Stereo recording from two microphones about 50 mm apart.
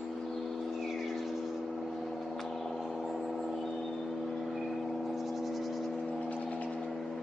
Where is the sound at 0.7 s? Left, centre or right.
Centre.